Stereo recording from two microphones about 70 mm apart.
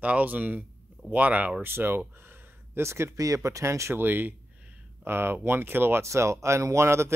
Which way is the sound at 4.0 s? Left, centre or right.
Right.